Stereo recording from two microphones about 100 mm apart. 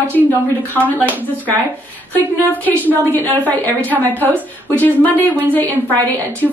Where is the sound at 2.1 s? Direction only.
20° left (ahead or behind).